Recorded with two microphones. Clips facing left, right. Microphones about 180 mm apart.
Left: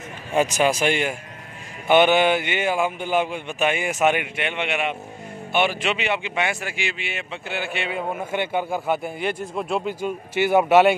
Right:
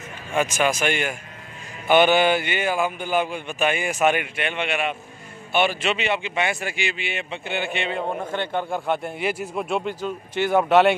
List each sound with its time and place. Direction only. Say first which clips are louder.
0.3 s a man's voice: left 2 dB; 35° left (ahead or behind); by 11.0 s 5° left (ahead or behind)